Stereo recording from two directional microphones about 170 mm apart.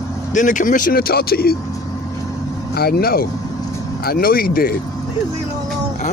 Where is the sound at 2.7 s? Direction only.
65° left (ahead or behind).